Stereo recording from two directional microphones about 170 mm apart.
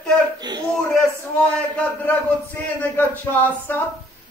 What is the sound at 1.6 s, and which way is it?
A man's voice, 5° left (ahead or behind).